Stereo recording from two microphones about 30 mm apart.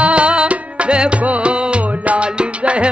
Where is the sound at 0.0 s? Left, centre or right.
Right.